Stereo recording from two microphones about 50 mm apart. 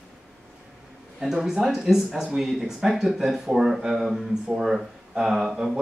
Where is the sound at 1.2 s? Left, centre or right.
Centre.